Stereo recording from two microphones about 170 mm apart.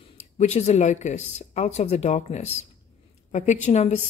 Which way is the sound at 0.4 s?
40° left (ahead or behind).